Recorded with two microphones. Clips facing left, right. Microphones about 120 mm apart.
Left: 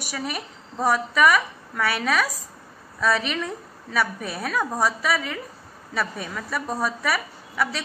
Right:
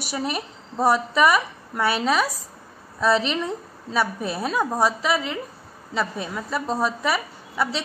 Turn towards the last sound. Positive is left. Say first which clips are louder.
# right 1 dB
turn(degrees=-25)  # may be behind; listen again after turning